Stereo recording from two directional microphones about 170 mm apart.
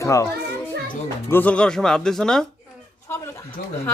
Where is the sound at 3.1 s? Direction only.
15° left (ahead or behind).